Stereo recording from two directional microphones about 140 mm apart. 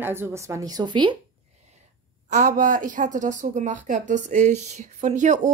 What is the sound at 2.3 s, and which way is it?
A woman's voice, 70° right (ahead or behind).